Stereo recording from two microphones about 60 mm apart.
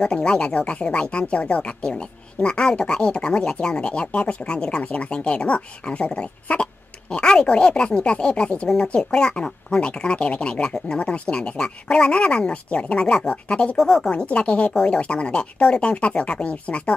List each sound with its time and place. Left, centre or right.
0.0 s speech: centre
13.8 s speech: centre
14.1 s speech: centre